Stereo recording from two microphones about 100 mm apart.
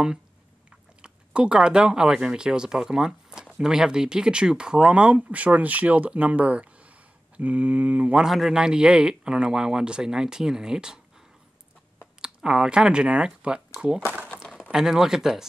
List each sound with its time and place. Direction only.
1.0 s speech: 10° right (ahead or behind)
8.3 s speech: 5° right (ahead or behind)
12.2 s speech: 5° right (ahead or behind)
14.0 s speech: 20° right (ahead or behind)
14.6 s speech: 5° right (ahead or behind)